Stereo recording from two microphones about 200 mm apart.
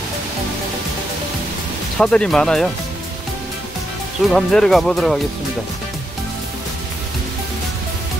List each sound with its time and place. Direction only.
2.0 s speech: 5° left (ahead or behind)
4.3 s speech: centre (ahead or behind)